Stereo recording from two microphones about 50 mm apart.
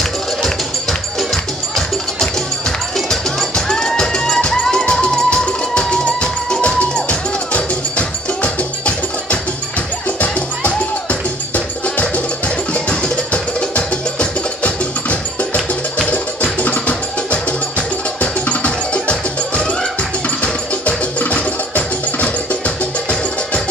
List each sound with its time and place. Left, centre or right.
1.3 s music: centre; by 22.6 s left